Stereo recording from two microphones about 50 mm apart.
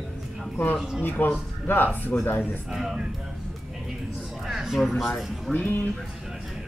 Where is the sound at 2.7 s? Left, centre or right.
Centre.